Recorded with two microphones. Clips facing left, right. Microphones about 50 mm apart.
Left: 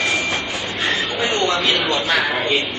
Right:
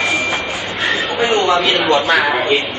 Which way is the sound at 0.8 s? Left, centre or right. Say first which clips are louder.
Right 5 dB; centre.